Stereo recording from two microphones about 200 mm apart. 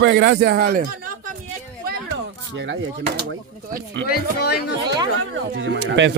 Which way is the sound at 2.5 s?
60° right (ahead or behind).